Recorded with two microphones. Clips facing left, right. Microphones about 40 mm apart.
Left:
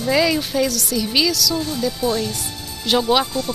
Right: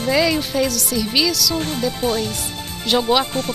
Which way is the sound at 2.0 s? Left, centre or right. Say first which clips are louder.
Even; right.